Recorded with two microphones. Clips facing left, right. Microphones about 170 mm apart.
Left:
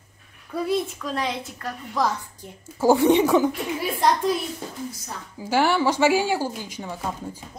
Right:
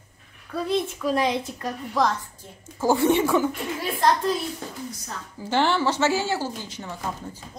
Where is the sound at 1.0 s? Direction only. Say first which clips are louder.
Right 5 dB; 15° right (ahead or behind).